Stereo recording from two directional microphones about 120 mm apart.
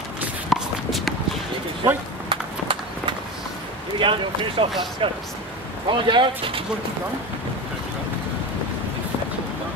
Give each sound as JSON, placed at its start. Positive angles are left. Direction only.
{"t": 0.5, "sound": "walk", "side_deg": 0}
{"t": 2.2, "sound": "run", "side_deg": -45}
{"t": 4.0, "sound": "speech", "side_deg": -45}